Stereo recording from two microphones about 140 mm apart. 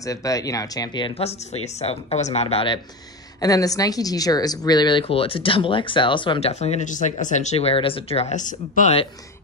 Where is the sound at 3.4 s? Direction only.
25° left (ahead or behind).